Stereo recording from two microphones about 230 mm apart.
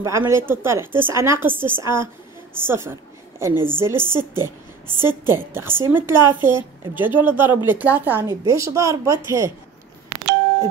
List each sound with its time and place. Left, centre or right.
0.0 s a woman's voice: centre